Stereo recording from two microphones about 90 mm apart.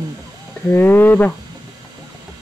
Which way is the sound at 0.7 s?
25° left (ahead or behind).